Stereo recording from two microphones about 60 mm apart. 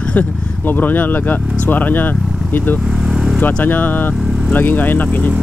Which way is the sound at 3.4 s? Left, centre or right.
Left.